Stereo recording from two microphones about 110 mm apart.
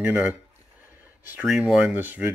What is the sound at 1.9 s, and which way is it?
Speech, 15° right (ahead or behind).